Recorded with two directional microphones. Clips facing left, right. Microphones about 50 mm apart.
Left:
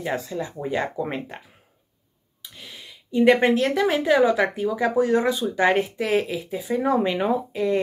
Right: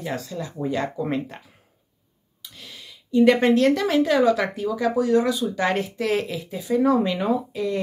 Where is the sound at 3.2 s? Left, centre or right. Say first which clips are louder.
Right 1 dB; centre.